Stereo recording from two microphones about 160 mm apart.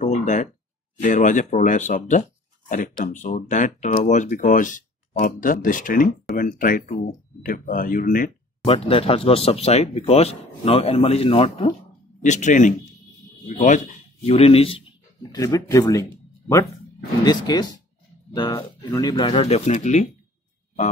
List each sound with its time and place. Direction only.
0.0 s a sound: 50° left (ahead or behind)
1.0 s speech: 50° left (ahead or behind)
8.6 s speech: 35° left (ahead or behind)
12.2 s speech: 50° left (ahead or behind)
15.3 s speech: 20° left (ahead or behind); by 20.1 s 50° left (ahead or behind)